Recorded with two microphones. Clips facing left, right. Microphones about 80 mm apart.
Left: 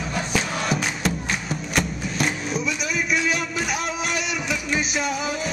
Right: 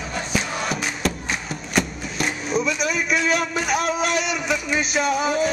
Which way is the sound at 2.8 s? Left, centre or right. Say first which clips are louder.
Right 2 dB; right.